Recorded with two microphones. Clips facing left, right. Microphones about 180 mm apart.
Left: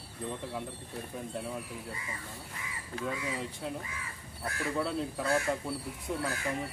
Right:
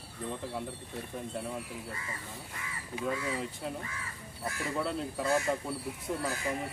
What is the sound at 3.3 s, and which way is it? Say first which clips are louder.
Speech: right 1 dB; centre (ahead or behind).